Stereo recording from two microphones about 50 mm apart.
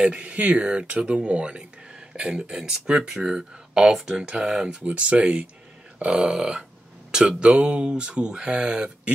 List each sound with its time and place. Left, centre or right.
0.0 s speech: right
4.8 s speech: right